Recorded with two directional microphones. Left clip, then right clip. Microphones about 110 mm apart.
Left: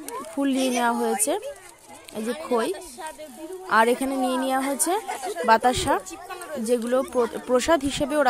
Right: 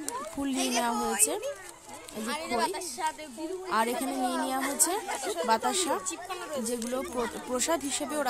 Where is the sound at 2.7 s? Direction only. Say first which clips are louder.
Right 4 dB; 60° right (ahead or behind).